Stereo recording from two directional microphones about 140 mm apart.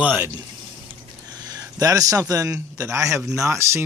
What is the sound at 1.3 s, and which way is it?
A man's voice, 30° right (ahead or behind).